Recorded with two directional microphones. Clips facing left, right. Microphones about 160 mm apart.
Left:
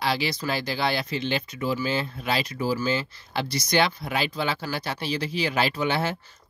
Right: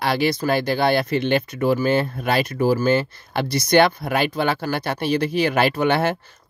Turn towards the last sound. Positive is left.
turn(degrees=-60)  # may be behind; listen again after turning